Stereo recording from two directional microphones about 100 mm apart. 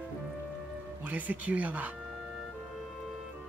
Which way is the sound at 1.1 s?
15° right (ahead or behind).